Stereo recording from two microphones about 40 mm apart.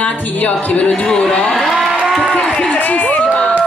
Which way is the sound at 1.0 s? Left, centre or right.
Left.